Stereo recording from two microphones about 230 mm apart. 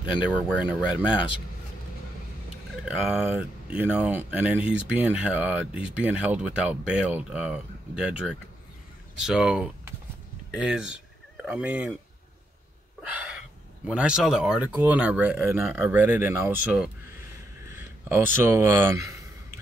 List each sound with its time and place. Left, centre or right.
0.3 s speech: centre
1.0 s speech: left
2.8 s speech: centre
13.1 s a sound: centre
13.8 s speech: centre